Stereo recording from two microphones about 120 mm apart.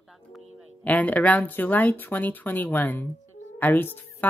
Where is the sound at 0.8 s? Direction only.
15° left (ahead or behind).